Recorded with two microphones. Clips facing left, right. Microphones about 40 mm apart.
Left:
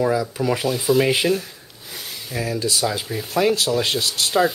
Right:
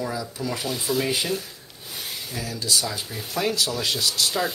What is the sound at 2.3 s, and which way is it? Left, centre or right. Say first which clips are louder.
Speech: left 4 dB; left.